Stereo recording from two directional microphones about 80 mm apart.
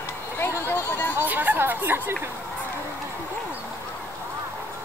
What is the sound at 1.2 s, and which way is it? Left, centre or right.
Speech, right.